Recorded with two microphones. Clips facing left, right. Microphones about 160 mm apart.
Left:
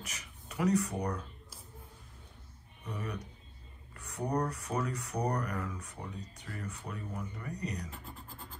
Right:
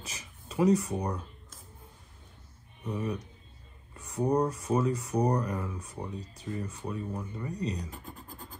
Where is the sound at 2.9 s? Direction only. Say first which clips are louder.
Right 7 dB; 25° right (ahead or behind).